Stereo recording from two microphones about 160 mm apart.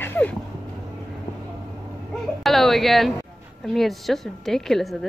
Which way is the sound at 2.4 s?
Centre (ahead or behind).